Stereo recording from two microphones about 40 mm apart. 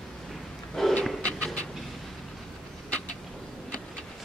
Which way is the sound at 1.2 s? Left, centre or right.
Left.